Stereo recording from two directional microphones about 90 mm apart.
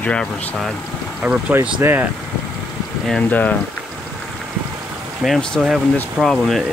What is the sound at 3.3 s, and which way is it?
Speech, 15° left (ahead or behind).